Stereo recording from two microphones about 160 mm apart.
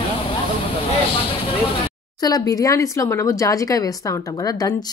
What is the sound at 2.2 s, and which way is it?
Speech, 20° left (ahead or behind).